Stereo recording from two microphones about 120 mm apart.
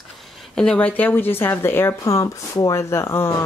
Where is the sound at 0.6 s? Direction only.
10° left (ahead or behind).